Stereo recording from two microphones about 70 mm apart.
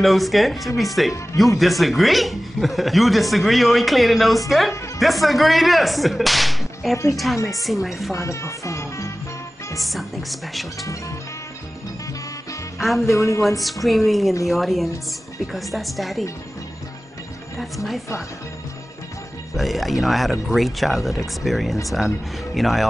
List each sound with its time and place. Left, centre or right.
0.0 s speech: centre
8.1 s speech: left
9.8 s speech: centre
12.7 s speech: centre
13.0 s speech: left
13.8 s speech: centre
19.5 s speech: centre